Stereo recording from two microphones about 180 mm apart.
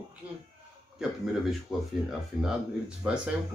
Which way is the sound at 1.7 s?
Centre (ahead or behind).